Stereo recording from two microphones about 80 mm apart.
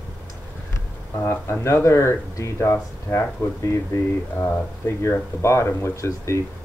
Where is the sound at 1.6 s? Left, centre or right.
Left.